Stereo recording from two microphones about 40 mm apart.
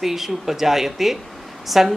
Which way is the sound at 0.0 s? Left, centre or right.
Centre.